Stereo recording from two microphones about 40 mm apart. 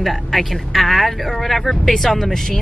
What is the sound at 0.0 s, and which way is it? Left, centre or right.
Speech, centre.